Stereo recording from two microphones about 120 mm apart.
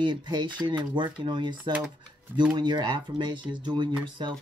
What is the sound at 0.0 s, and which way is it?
Speech, 40° right (ahead or behind).